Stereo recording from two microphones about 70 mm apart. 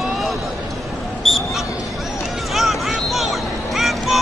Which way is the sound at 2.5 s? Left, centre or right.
Centre.